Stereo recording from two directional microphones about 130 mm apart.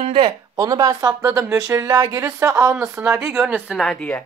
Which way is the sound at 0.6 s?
30° right (ahead or behind).